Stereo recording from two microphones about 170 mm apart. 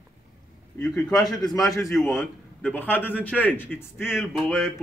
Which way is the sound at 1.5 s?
20° left (ahead or behind).